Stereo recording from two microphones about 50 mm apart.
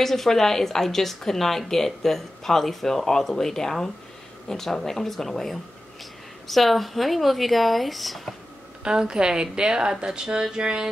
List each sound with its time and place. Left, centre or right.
0.0 s a woman's voice: centre
8.8 s a woman's voice: centre